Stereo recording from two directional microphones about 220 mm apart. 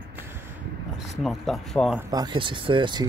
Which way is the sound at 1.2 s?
Centre (ahead or behind).